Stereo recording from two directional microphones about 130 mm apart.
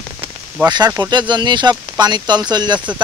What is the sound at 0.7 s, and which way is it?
Speech, 35° right (ahead or behind).